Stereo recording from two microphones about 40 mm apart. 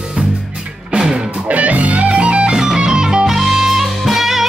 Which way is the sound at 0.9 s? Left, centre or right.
Centre.